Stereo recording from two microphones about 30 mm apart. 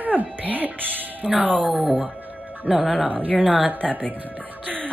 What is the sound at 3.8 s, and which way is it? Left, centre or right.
Speech, left.